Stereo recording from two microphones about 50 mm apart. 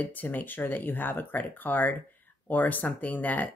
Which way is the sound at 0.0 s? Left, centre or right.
Left.